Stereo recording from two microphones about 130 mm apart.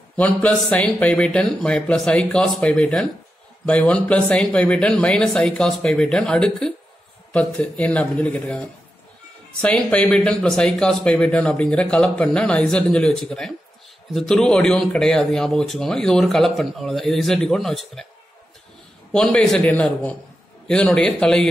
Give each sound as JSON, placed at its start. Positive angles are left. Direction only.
{"t": 0.2, "sound": "speech", "side_deg": 10}
{"t": 19.1, "sound": "speech", "side_deg": 5}